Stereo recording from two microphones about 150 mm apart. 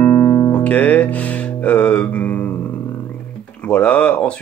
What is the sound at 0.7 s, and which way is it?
Music, 10° left (ahead or behind).